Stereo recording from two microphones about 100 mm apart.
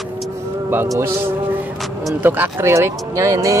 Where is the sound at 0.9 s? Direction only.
25° right (ahead or behind).